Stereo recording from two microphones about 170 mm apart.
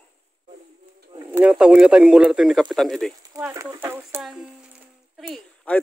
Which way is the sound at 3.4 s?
15° right (ahead or behind).